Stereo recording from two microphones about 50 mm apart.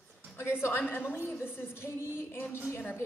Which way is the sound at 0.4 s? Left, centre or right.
Left.